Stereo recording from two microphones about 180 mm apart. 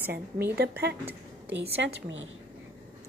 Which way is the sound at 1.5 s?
85° right.